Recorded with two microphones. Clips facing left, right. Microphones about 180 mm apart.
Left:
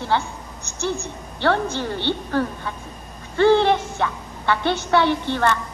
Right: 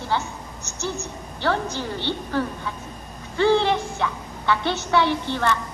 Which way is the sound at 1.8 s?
60° left (ahead or behind).